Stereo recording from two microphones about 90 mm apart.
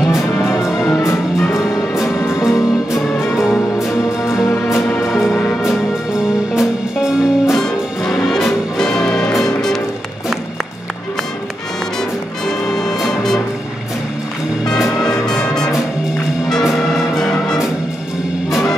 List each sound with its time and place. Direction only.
1.0 s music: 30° left (ahead or behind)
4.6 s music: centre (ahead or behind)
6.5 s music: 5° right (ahead or behind)
7.5 s music: 5° left (ahead or behind)
12.4 s music: 5° left (ahead or behind)
15.0 s music: 5° left (ahead or behind)